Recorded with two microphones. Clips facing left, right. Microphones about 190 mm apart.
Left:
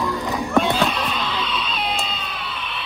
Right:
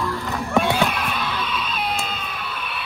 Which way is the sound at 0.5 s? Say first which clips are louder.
Even; 10° right (ahead or behind).